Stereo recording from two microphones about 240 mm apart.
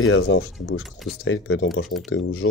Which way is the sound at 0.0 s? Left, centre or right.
Left.